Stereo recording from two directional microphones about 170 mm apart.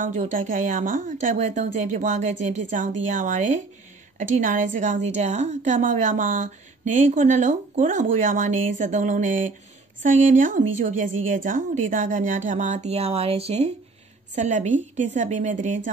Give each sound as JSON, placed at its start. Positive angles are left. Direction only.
{"t": 0.0, "sound": "a woman's voice", "side_deg": -50}